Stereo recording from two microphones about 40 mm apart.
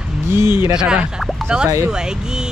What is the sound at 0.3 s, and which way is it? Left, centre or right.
Speech, right.